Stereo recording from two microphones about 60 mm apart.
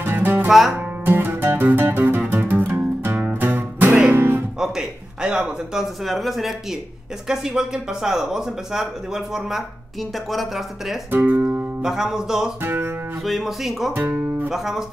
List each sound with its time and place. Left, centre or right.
0.0 s music: right
0.5 s speech: centre
1.0 s music: right
3.2 s music: right
4.6 s a man's voice: centre
6.0 s speech: centre
7.2 s speech: centre
11.1 s speech: right
11.8 s speech: centre
12.6 s music: right
13.2 s speech: centre
13.9 s music: right
14.5 s speech: centre